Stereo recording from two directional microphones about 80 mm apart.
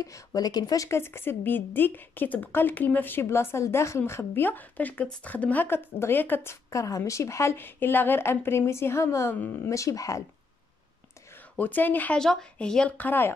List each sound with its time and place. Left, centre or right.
0.0 s speech: left
0.8 s a woman's voice: left
9.3 s a woman's voice: left
9.7 s a woman's voice: left
11.5 s a woman's voice: left
12.2 s speech: centre
12.9 s a woman's voice: left